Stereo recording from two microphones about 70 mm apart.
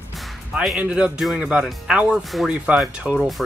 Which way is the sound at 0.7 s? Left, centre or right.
Centre.